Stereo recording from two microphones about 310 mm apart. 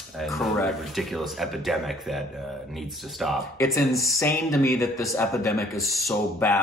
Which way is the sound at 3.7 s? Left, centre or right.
Centre.